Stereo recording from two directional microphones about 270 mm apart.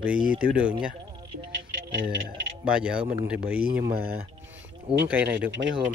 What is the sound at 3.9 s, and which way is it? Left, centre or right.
Speech, right.